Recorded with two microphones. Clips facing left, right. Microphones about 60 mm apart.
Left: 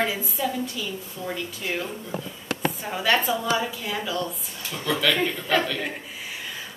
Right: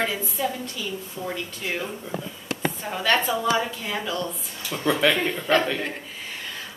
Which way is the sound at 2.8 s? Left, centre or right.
Centre.